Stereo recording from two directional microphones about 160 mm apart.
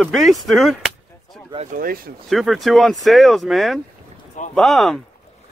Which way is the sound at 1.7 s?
65° right (ahead or behind).